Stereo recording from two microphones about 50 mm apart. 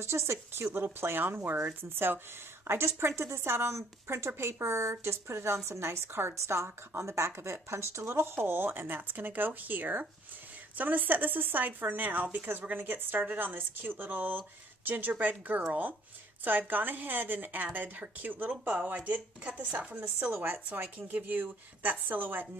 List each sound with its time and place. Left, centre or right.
0.0 s speech: right
19.0 s speech: right
20.2 s speech: right
20.4 s speech: right